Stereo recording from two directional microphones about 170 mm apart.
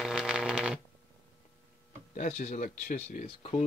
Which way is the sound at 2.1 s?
45° left (ahead or behind).